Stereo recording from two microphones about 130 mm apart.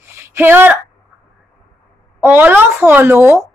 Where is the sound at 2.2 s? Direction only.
15° right (ahead or behind).